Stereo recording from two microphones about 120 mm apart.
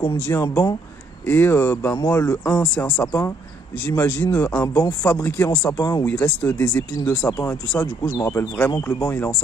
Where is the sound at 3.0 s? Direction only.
25° left (ahead or behind).